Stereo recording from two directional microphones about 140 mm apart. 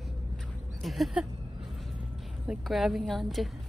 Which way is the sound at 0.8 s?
Centre (ahead or behind).